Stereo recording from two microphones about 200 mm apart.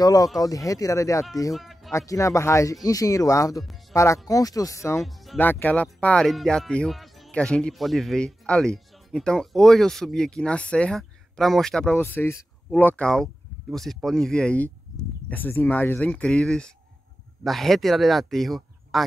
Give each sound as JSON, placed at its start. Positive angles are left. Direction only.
{"t": 0.0, "sound": "speech", "side_deg": 20}
{"t": 1.5, "sound": "music", "side_deg": 0}
{"t": 1.9, "sound": "speech", "side_deg": 15}
{"t": 5.0, "sound": "speech", "side_deg": 0}